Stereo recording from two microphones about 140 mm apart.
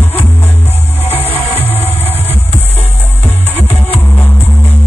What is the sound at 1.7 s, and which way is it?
Music, 45° left (ahead or behind).